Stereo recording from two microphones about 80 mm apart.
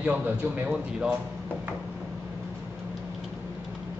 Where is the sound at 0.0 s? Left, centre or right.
Centre.